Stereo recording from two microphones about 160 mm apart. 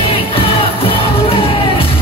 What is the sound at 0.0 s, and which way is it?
Music, 35° left (ahead or behind).